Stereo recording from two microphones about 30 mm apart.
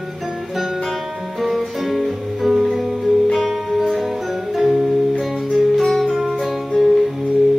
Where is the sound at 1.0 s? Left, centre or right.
Centre.